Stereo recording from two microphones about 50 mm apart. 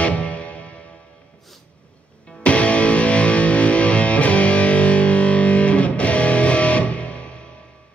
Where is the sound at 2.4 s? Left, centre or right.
Left.